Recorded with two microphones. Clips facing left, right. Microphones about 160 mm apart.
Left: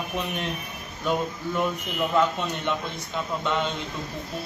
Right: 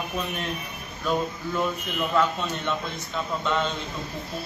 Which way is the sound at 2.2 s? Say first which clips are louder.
Left 1 dB; 15° left (ahead or behind).